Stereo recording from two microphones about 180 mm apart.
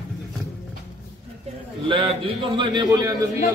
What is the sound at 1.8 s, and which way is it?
A man's voice, 30° right (ahead or behind).